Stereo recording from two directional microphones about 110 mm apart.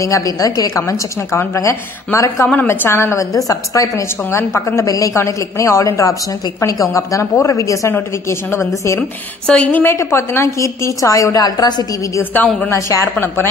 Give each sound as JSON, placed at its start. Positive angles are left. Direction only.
{"t": 0.0, "sound": "a woman's voice", "side_deg": 30}
{"t": 9.5, "sound": "a woman's voice", "side_deg": 15}
{"t": 12.2, "sound": "a woman's voice", "side_deg": 15}
{"t": 12.7, "sound": "a woman's voice", "side_deg": 30}